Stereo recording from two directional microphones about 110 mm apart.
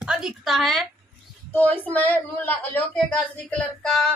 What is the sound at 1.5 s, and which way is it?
Speech, 15° left (ahead or behind).